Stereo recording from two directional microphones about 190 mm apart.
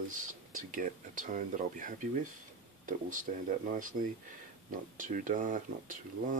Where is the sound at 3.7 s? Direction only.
45° right (ahead or behind).